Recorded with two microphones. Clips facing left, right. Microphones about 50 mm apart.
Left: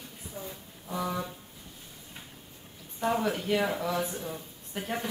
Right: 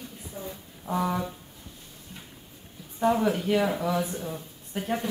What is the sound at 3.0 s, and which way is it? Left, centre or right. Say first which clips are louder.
Speech: right 5 dB; centre.